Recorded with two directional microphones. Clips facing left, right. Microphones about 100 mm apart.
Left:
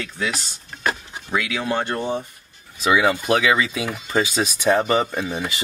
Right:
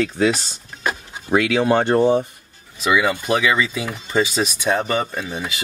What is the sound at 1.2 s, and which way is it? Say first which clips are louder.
Speech: right 7 dB; 40° right (ahead or behind).